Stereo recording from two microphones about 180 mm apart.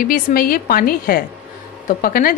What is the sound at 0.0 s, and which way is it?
A woman's voice, 50° left (ahead or behind).